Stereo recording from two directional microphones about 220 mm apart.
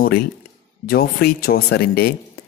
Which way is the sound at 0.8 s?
45° left (ahead or behind).